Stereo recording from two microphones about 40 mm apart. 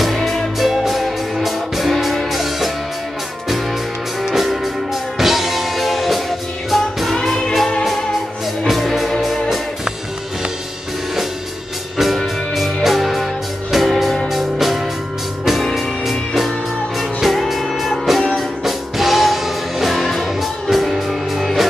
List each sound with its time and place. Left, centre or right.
0.0 s music: centre
4.3 s music: centre
7.2 s music: centre
8.6 s music: centre
12.0 s music: centre